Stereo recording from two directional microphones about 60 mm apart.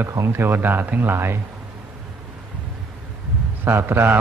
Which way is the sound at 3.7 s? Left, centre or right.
Right.